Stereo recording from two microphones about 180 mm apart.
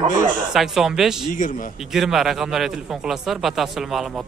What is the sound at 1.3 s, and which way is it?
Speech, 45° left (ahead or behind).